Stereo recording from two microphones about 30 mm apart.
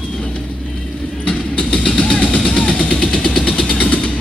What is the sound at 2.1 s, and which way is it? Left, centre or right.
Vehicle, left.